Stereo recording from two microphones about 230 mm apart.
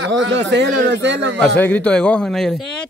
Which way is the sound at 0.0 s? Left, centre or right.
Right.